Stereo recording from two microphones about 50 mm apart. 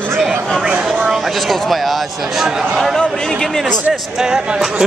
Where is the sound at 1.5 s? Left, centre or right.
Centre.